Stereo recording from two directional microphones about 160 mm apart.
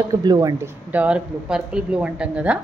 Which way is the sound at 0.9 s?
10° right (ahead or behind).